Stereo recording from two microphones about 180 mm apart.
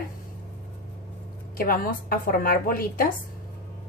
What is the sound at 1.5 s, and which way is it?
A woman's voice, 55° left (ahead or behind).